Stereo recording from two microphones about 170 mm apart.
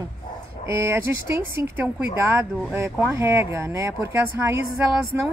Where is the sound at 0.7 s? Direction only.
15° right (ahead or behind).